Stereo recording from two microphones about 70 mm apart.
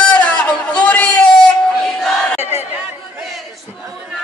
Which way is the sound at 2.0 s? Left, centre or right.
Centre.